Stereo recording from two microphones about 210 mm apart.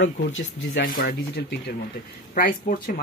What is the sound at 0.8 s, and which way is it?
Speech, 40° left (ahead or behind).